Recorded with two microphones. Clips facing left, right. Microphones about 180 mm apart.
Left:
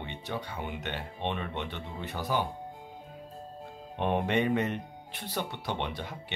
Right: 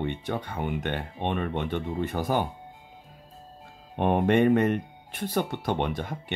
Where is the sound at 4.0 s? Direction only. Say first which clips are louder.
Right 6 dB; 50° right (ahead or behind).